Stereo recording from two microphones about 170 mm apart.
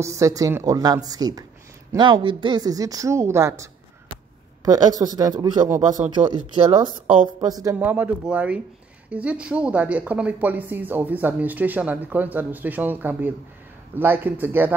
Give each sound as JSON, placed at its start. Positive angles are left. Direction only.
{"t": 0.0, "sound": "speech", "side_deg": -20}
{"t": 7.7, "sound": "a woman's voice", "side_deg": -10}